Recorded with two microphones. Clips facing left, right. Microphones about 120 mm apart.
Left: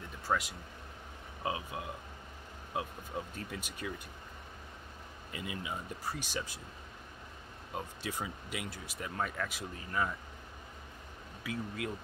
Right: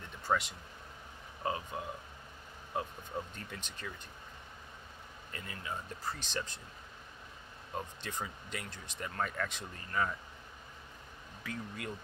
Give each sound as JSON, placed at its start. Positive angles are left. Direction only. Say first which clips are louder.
{"t": 0.3, "sound": "speech", "louder": "right 1 dB", "side_deg": 0}
{"t": 5.3, "sound": "speech", "louder": "left 2 dB", "side_deg": 10}
{"t": 7.7, "sound": "speech", "louder": "left 1 dB", "side_deg": 10}
{"t": 11.4, "sound": "speech", "louder": "left 4 dB", "side_deg": 0}